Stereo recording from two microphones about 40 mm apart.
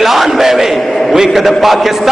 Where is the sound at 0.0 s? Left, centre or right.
Centre.